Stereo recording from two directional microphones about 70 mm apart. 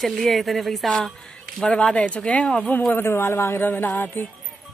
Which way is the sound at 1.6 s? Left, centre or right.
Centre.